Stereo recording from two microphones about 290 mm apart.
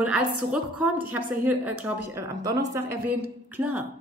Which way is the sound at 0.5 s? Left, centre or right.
Centre.